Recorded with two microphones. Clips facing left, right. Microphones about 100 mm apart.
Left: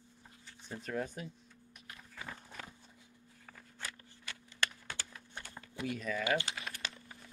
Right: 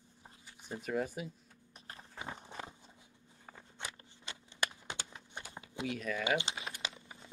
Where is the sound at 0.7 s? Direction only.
5° right (ahead or behind).